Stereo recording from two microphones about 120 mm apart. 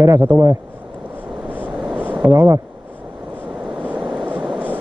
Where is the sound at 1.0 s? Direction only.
15° right (ahead or behind).